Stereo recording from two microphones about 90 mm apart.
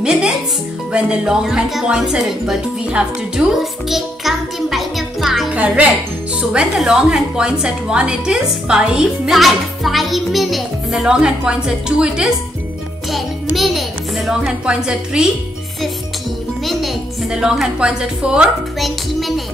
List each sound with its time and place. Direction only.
0.0 s music: 10° right (ahead or behind)
0.9 s speech: 10° right (ahead or behind)
5.5 s music: 15° right (ahead or behind)
6.5 s a woman's voice: 10° right (ahead or behind)
16.6 s a woman's voice: 5° right (ahead or behind)